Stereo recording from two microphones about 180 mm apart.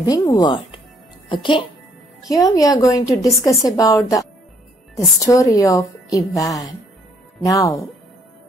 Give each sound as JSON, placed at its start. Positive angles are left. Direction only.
{"t": 0.0, "sound": "a woman's voice", "side_deg": 20}